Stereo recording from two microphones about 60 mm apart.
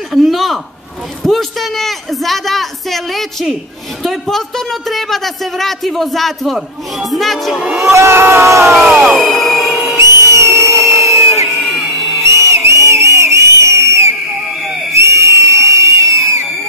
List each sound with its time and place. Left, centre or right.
0.1 s speech: centre
7.8 s speech: right
9.0 s music: centre
9.9 s a sound: right